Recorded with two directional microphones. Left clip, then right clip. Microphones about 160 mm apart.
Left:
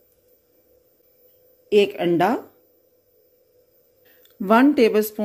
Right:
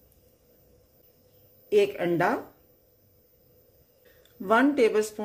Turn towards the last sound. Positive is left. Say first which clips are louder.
# left 5 dB
turn(degrees=55)  # may be behind; listen again after turning